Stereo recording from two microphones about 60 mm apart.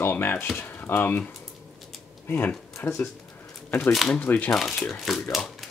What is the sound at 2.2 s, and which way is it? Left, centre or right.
Speech, left.